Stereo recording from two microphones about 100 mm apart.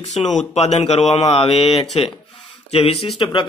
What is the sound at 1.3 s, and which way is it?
Mantra, 80° left.